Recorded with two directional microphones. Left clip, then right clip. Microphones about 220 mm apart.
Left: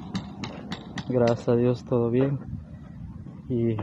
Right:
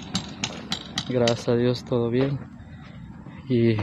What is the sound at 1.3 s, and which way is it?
Speech, centre (ahead or behind).